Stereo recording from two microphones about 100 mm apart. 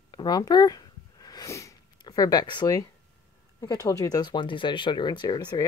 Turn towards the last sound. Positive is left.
turn(degrees=45)  # may be behind; listen again after turning